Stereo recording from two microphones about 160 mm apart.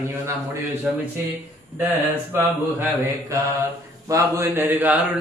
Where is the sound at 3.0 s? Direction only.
20° right (ahead or behind).